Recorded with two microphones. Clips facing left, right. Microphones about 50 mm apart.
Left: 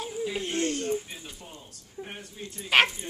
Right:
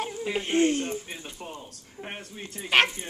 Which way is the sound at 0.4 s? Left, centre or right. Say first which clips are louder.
Right 8 dB; right.